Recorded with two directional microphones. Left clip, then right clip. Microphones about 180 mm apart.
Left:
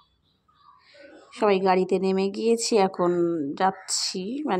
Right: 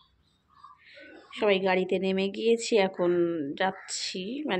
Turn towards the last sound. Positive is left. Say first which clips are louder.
# left 4 dB
turn(degrees=35)  # may be behind; listen again after turning